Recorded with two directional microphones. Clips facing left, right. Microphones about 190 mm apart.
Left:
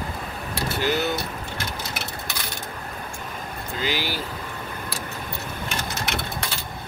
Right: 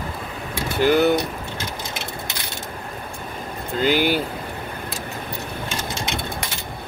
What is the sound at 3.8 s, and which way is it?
Speech, 55° right (ahead or behind).